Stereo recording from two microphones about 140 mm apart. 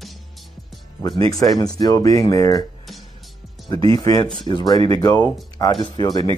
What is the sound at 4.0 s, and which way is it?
Speech, 25° left (ahead or behind).